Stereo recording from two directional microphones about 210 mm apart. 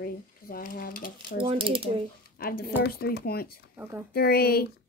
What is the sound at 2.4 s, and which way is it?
Speech, 45° left (ahead or behind).